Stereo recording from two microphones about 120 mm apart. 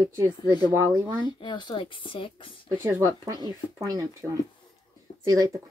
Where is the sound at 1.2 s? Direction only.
40° left (ahead or behind).